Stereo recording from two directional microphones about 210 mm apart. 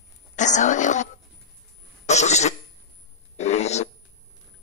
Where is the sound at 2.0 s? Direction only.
35° left (ahead or behind).